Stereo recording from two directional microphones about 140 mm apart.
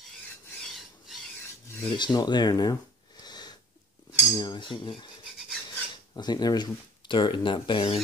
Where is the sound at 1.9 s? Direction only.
30° left (ahead or behind).